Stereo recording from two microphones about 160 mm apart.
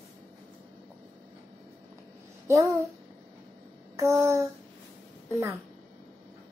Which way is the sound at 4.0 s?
20° right (ahead or behind).